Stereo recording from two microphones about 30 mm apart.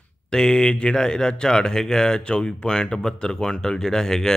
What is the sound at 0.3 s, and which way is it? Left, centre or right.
A man's voice, centre.